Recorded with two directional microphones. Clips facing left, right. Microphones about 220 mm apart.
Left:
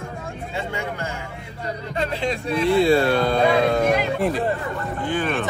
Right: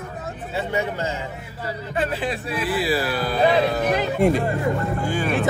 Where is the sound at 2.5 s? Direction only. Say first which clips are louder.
Left 7 dB; 25° left (ahead or behind).